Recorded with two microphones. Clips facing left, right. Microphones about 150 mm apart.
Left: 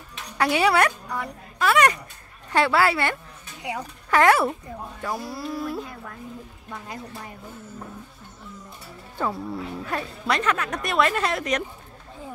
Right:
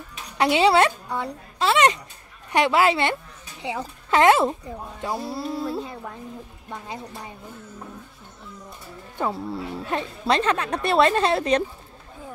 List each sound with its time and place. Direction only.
0.4 s a woman's voice: 20° right (ahead or behind)
9.2 s a woman's voice: 25° right (ahead or behind)